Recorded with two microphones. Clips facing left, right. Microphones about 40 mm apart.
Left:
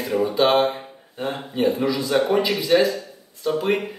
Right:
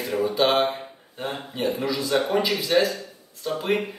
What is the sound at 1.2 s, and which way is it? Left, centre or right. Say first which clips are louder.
Speech: left 5 dB; centre.